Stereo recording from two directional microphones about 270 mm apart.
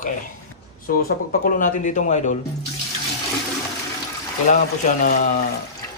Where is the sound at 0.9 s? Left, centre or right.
Left.